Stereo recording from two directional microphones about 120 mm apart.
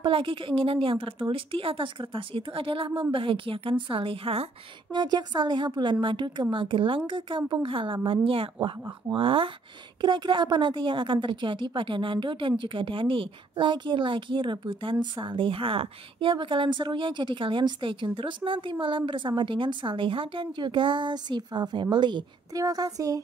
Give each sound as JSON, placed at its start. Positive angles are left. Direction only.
{"t": 0.0, "sound": "a woman's voice", "side_deg": -45}
{"t": 4.9, "sound": "a woman's voice", "side_deg": -35}